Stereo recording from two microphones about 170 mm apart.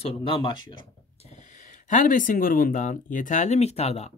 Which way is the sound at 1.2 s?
40° left (ahead or behind).